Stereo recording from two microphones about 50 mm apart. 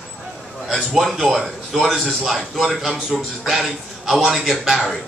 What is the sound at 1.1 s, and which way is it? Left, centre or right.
A man's voice, centre.